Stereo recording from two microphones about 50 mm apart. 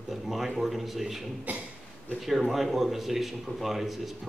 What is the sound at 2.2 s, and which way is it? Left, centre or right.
A man's voice, centre.